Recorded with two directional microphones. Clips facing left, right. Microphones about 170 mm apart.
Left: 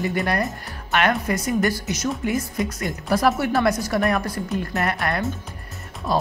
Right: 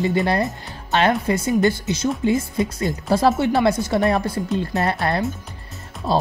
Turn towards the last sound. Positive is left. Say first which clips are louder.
# right 2 dB
turn(degrees=-30)  # may be behind; listen again after turning